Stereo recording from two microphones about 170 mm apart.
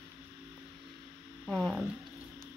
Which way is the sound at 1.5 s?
Centre (ahead or behind).